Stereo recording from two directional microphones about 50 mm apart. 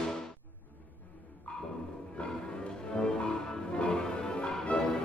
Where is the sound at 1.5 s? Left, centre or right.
Left.